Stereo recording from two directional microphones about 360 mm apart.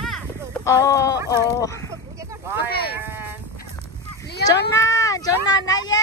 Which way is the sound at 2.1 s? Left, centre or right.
Centre.